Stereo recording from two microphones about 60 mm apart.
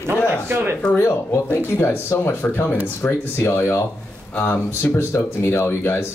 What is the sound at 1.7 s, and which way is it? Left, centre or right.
Speech, left.